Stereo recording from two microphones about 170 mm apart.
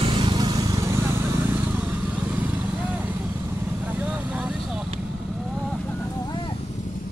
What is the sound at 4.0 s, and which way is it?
Vehicle, 5° right (ahead or behind).